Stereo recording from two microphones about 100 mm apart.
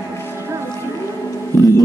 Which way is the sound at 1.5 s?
25° left (ahead or behind).